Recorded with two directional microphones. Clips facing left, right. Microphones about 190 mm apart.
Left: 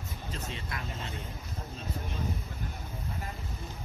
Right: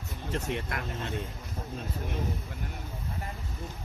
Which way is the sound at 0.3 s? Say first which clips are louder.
Right 8 dB; 65° right (ahead or behind).